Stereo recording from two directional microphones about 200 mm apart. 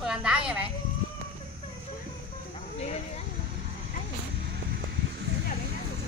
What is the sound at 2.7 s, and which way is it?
Speech, 30° left (ahead or behind).